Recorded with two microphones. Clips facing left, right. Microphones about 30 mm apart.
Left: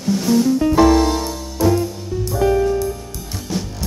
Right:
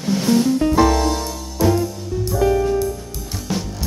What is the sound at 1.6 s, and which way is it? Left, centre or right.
Music, centre.